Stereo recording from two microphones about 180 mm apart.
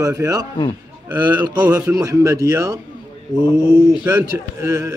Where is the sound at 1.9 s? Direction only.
20° right (ahead or behind).